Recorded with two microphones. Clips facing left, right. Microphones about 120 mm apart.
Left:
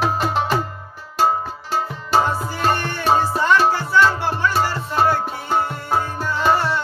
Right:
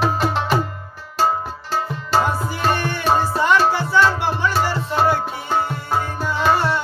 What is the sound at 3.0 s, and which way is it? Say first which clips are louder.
Music: left 1 dB; 5° left (ahead or behind).